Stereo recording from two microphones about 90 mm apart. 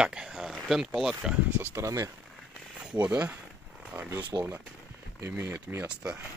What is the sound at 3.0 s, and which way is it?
Speech, 15° right (ahead or behind).